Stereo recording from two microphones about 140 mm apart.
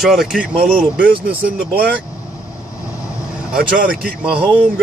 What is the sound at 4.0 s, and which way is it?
Speech, 10° right (ahead or behind).